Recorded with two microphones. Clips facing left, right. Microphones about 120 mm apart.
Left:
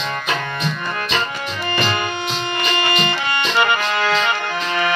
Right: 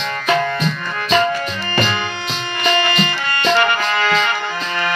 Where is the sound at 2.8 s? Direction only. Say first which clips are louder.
Even; 15° left (ahead or behind).